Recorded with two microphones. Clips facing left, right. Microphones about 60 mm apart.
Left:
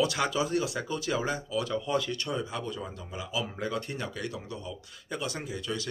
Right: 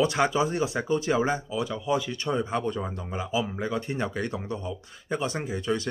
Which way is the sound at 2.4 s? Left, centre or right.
Right.